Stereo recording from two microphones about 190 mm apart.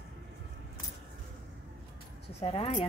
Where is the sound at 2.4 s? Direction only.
30° left (ahead or behind).